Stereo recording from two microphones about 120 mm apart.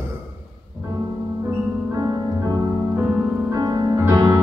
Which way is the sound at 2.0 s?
30° right (ahead or behind).